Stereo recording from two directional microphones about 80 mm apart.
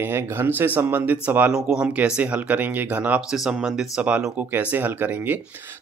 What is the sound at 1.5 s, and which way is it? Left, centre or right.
Speech, centre.